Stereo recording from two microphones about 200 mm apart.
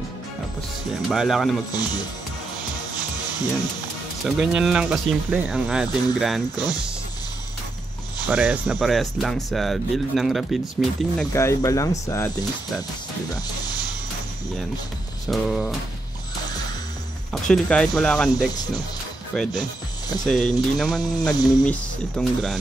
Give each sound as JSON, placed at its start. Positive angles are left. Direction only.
{"t": 1.0, "sound": "speech", "side_deg": 0}
{"t": 4.4, "sound": "speech", "side_deg": -5}
{"t": 8.3, "sound": "speech", "side_deg": -5}
{"t": 11.3, "sound": "speech", "side_deg": 15}
{"t": 15.2, "sound": "speech", "side_deg": 0}
{"t": 17.3, "sound": "speech", "side_deg": 5}
{"t": 21.0, "sound": "speech", "side_deg": 20}
{"t": 21.6, "sound": "speech", "side_deg": 5}